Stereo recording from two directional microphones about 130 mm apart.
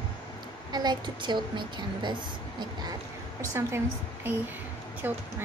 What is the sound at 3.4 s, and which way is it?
Speech, 20° right (ahead or behind).